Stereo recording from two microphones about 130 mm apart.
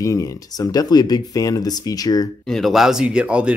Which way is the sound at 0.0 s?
25° left (ahead or behind).